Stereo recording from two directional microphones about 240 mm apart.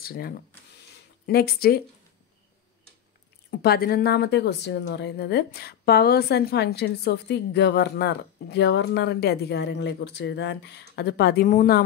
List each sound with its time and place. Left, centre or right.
0.0 s speech: left
3.4 s a woman's voice: left